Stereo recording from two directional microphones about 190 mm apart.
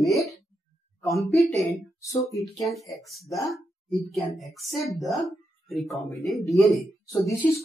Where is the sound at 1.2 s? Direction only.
Centre (ahead or behind).